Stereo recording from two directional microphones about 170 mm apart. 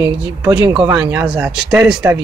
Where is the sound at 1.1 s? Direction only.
10° right (ahead or behind).